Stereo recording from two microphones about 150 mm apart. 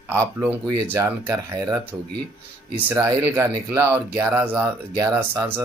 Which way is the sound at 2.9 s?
15° right (ahead or behind).